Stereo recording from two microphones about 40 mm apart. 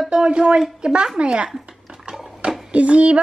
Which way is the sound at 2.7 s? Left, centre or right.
Right.